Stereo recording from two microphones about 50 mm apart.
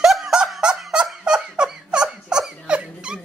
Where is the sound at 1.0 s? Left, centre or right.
Centre.